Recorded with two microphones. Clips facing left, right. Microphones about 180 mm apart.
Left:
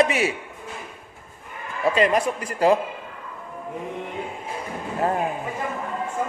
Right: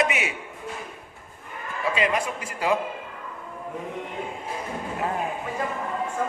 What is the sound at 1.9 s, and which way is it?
Speech, 40° left (ahead or behind).